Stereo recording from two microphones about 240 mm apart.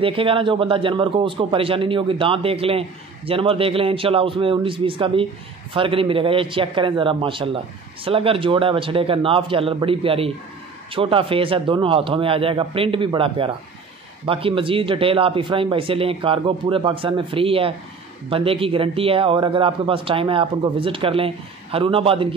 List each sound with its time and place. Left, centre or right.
0.0 s speech: right